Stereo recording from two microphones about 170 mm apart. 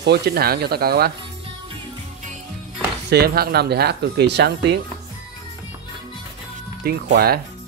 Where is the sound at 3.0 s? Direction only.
70° right (ahead or behind).